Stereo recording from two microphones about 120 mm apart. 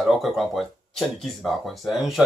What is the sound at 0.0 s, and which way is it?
A man's voice, centre (ahead or behind).